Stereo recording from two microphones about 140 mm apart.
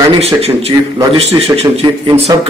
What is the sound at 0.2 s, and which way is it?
Speech, 45° right (ahead or behind).